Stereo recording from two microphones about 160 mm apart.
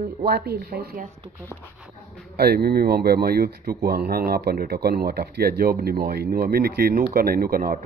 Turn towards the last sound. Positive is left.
turn(degrees=-65)  # may be behind; listen again after turning